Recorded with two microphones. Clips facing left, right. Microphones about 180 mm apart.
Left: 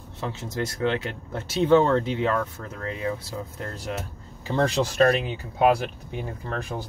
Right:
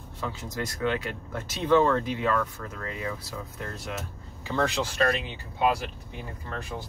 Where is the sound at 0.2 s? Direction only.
25° left (ahead or behind); by 5.3 s 40° left (ahead or behind).